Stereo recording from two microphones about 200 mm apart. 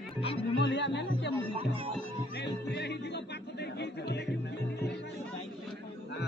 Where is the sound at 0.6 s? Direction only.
60° left (ahead or behind).